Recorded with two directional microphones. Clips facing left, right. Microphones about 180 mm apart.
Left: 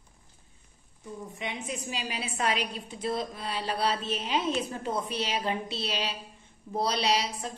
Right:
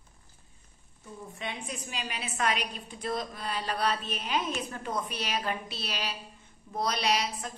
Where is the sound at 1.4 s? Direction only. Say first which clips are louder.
Left 2 dB; 20° left (ahead or behind).